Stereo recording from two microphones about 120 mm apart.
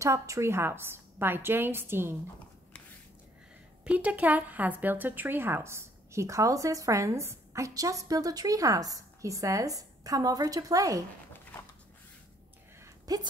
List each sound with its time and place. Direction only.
0.0 s a woman's voice: 25° right (ahead or behind)
3.8 s a woman's voice: 10° right (ahead or behind); by 11.1 s 30° right (ahead or behind)
12.8 s a sound: 35° right (ahead or behind)